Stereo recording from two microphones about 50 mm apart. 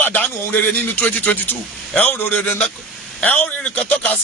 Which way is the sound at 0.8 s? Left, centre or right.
Left.